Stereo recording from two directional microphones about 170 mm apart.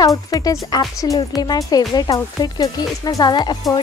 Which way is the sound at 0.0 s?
20° left (ahead or behind).